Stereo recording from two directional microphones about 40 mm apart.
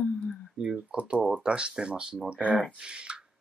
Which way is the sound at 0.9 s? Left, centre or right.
Right.